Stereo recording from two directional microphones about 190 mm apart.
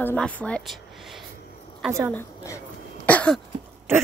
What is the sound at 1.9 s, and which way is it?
Speech, 15° right (ahead or behind).